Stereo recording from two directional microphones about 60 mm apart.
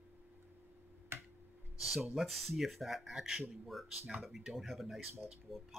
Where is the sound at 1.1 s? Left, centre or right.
Right.